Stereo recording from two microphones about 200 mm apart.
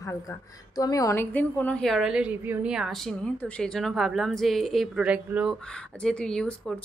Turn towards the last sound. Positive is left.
turn(degrees=5)  # may be behind; listen again after turning